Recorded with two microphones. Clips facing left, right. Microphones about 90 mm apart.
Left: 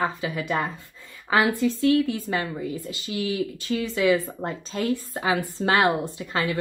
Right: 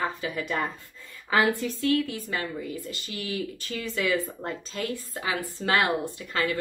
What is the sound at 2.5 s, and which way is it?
Speech, 20° left (ahead or behind).